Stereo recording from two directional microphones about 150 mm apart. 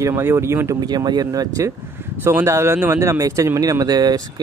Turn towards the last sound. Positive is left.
turn(degrees=-25)  # may be behind; listen again after turning